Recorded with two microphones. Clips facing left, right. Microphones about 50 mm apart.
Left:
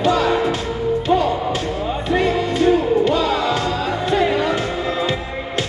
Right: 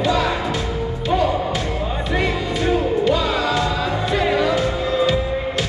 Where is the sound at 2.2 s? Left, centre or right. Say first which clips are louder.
Left 4 dB; left.